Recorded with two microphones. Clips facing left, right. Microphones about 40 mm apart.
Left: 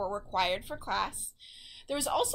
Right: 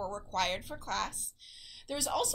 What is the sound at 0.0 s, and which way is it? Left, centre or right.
Speech, centre.